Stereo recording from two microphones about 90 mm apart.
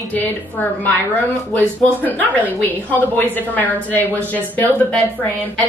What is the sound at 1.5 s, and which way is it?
Speech, 20° left (ahead or behind).